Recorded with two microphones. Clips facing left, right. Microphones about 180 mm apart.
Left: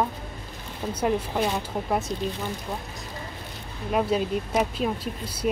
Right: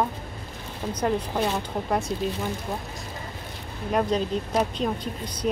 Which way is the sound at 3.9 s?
5° left (ahead or behind).